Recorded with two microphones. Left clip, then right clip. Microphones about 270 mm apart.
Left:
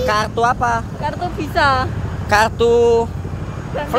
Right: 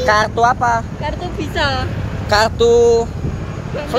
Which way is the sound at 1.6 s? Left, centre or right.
Centre.